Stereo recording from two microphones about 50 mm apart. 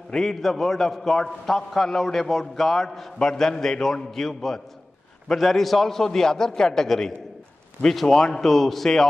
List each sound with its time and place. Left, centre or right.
0.1 s a man's voice: centre